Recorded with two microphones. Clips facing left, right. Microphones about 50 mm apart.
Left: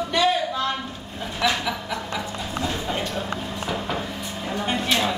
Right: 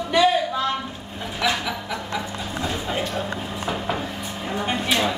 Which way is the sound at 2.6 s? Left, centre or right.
Centre.